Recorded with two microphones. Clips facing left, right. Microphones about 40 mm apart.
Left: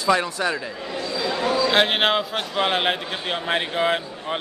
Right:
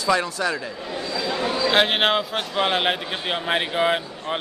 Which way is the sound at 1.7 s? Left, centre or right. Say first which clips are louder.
Right 2 dB; centre.